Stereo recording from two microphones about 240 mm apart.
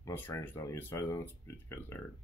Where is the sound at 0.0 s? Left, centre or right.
Centre.